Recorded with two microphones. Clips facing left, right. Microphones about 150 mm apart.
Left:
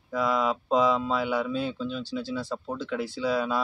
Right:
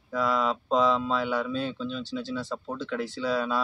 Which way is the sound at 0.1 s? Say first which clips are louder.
Left 1 dB; 10° left (ahead or behind).